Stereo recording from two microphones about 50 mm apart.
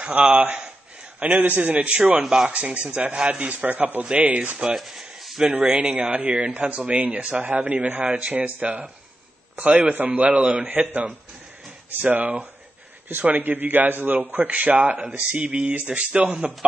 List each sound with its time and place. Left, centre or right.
0.1 s a man's voice: right
2.2 s a man's voice: centre
4.7 s a sound: centre
5.5 s a man's voice: right
8.1 s a man's voice: right
8.4 s a man's voice: right